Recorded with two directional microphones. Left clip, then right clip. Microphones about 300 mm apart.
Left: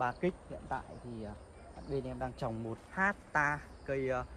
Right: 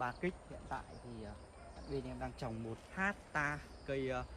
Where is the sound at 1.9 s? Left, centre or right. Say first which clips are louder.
Left 5 dB; centre.